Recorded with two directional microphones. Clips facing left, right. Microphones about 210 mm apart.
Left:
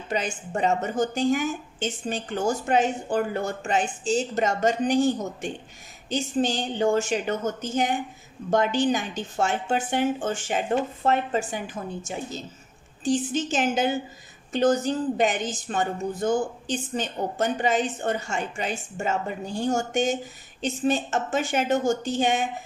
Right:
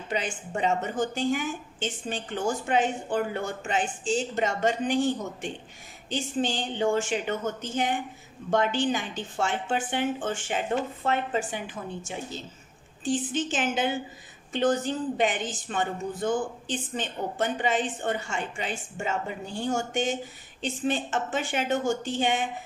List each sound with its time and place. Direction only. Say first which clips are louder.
0.1 s a woman's voice: left 3 dB; 40° left (ahead or behind)